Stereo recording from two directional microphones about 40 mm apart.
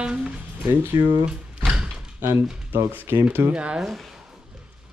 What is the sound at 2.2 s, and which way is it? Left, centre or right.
Speech, right.